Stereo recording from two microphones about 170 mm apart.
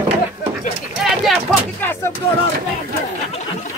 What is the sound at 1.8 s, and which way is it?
Speech, 15° left (ahead or behind).